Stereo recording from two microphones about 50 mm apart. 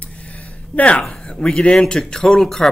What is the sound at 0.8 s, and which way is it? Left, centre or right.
Speech, left.